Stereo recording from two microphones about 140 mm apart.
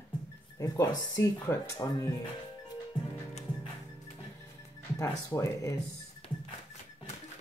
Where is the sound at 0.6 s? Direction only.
25° left (ahead or behind).